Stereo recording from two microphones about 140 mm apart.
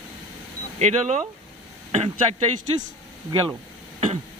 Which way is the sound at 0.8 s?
60° right (ahead or behind).